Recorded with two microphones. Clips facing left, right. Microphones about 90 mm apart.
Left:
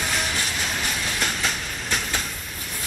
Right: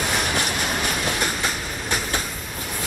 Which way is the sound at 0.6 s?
15° right (ahead or behind).